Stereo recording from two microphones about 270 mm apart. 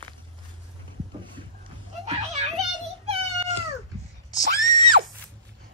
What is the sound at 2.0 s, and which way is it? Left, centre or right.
Children playing, right.